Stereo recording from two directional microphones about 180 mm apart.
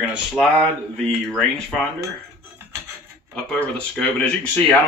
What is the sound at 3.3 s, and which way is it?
Speech, 5° left (ahead or behind).